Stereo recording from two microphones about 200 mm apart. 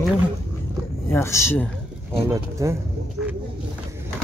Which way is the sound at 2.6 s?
15° right (ahead or behind).